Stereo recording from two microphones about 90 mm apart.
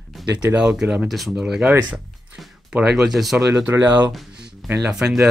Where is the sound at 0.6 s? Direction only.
10° right (ahead or behind).